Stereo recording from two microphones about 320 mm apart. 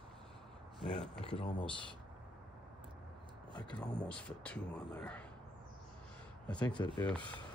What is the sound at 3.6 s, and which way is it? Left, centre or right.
A man's voice, centre.